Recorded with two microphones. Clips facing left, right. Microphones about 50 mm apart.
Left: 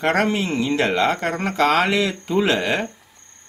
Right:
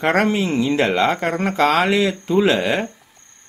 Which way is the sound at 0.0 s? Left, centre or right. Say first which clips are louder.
Right 2 dB; right.